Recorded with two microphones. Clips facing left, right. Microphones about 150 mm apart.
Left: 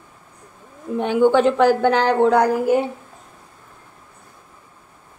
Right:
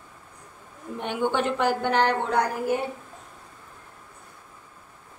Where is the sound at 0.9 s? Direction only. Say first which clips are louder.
Left 10 dB; 90° left.